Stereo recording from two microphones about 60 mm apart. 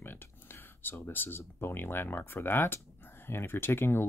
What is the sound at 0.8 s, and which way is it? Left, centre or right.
Speech, left.